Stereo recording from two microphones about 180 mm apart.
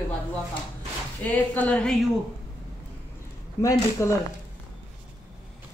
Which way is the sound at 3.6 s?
15° left (ahead or behind).